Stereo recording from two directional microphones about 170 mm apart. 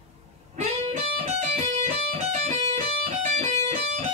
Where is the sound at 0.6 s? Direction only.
40° right (ahead or behind).